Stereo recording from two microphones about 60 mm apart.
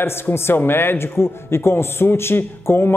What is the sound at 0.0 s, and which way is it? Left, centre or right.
A man's voice, left.